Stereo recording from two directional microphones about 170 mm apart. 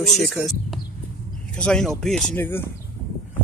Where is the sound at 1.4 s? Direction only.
5° left (ahead or behind).